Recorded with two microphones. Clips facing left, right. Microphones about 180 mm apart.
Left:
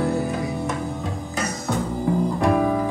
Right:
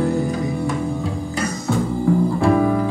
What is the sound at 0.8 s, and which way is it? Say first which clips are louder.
Music: right 5 dB; centre (ahead or behind).